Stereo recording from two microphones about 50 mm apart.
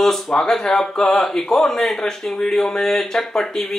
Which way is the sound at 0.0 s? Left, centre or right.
Centre.